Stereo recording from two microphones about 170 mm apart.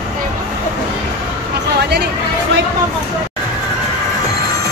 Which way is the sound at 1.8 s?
75° right (ahead or behind).